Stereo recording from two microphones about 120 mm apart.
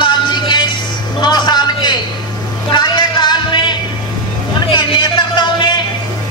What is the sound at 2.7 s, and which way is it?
Music, 40° left (ahead or behind).